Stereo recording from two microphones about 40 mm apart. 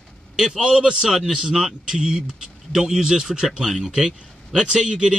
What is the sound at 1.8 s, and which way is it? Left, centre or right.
A man's voice, centre.